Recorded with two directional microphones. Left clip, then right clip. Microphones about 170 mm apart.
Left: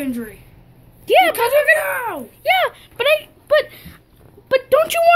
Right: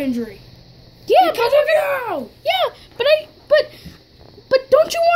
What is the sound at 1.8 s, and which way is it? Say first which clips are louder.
Speech: right 2 dB; 45° right (ahead or behind).